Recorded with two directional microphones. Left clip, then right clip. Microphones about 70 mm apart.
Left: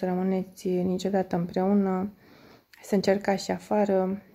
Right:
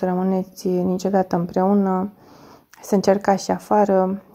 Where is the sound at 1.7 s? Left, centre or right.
Centre.